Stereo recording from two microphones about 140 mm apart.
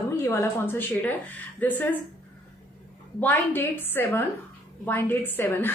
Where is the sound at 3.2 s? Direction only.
15° left (ahead or behind).